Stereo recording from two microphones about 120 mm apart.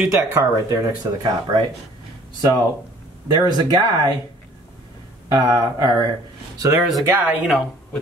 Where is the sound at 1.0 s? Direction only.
25° right (ahead or behind).